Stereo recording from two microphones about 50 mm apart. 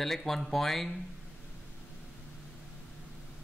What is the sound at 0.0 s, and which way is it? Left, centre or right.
Speech, centre.